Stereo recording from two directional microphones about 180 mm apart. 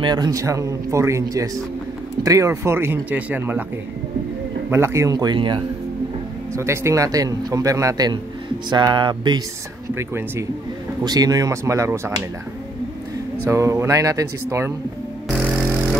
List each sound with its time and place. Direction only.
0.0 s a man's voice: 25° right (ahead or behind)
4.6 s speech: 15° right (ahead or behind)
6.5 s a man's voice: 15° right (ahead or behind)
9.9 s a man's voice: 15° right (ahead or behind)
13.5 s a man's voice: 15° right (ahead or behind)
15.2 s music: 5° right (ahead or behind)